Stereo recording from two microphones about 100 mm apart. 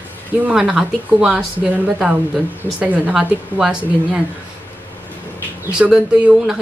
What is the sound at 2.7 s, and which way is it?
Speech, 15° right (ahead or behind).